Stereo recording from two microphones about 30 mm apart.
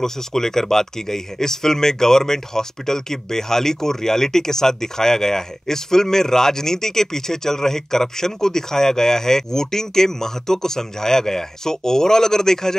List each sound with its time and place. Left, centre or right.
0.0 s speech: centre